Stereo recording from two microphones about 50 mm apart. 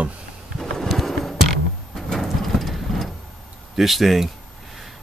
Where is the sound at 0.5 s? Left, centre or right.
Centre.